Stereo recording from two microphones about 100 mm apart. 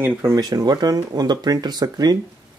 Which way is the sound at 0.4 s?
40° right (ahead or behind).